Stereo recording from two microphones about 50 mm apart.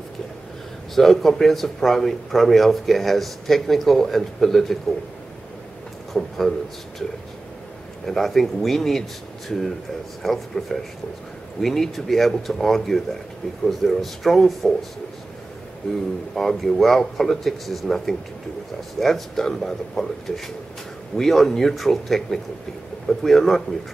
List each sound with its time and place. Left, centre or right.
0.9 s a man's voice: centre
6.1 s a man's voice: centre
8.1 s a man's voice: centre
10.2 s a man's voice: centre